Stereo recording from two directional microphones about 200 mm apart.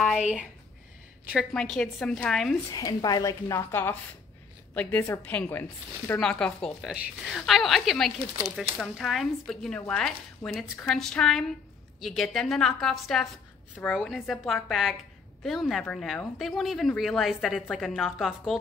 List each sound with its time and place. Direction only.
1.3 s speech: 5° left (ahead or behind)
2.7 s a woman's voice: 20° left (ahead or behind); by 18.6 s centre (ahead or behind)